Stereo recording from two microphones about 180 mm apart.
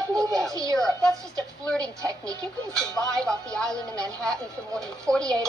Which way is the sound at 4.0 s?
20° right (ahead or behind).